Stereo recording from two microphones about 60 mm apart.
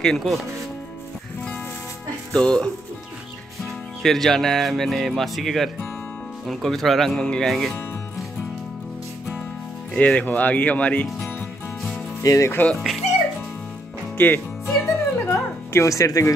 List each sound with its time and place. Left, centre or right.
0.0 s speech: centre
2.3 s speech: centre
9.9 s speech: left
12.2 s speech: left
12.7 s speech: centre
14.1 s music: left
14.7 s music: left